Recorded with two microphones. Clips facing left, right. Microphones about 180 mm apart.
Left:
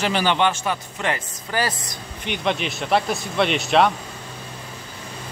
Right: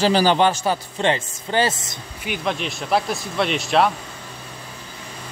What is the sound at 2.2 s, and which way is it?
Speech, 5° right (ahead or behind).